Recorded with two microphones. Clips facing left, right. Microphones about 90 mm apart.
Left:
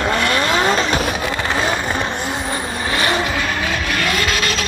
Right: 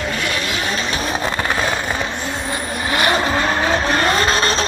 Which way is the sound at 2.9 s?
20° right (ahead or behind).